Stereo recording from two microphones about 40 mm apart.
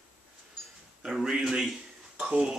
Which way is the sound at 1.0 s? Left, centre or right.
Centre.